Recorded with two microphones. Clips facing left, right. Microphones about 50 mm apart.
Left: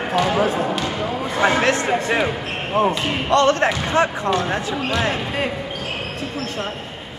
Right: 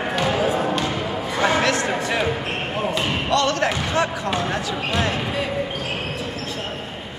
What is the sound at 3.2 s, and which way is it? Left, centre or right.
Speech, left.